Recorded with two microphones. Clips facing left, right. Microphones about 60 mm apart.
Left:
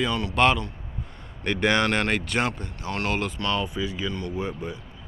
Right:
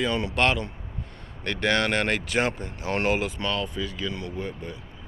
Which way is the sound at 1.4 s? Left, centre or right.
Centre.